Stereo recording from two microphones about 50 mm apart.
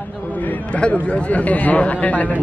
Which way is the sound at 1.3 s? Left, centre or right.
Left.